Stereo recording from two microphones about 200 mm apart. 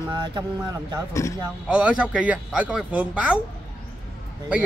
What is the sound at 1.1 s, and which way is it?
Speech, 15° left (ahead or behind).